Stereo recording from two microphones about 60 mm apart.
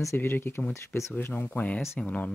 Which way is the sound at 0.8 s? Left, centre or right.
Left.